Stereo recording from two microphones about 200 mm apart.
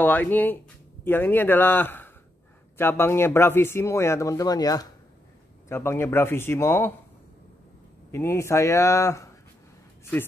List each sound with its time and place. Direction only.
0.0 s speech: 10° left (ahead or behind)
8.1 s speech: 15° left (ahead or behind)